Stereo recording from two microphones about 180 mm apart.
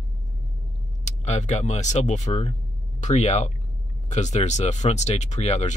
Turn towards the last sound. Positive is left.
turn(degrees=40)  # may be behind; listen again after turning